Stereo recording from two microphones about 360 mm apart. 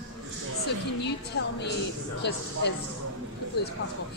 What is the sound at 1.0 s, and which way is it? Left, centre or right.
A woman's voice, left.